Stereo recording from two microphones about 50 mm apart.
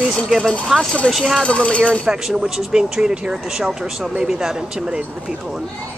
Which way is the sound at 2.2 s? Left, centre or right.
Centre.